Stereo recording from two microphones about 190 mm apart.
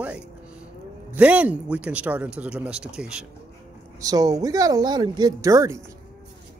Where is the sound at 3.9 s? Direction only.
20° right (ahead or behind).